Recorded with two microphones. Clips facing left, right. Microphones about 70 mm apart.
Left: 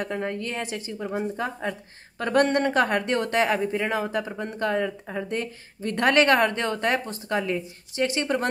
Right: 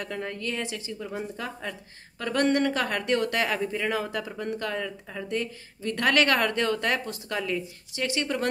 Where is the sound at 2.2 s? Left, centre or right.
Left.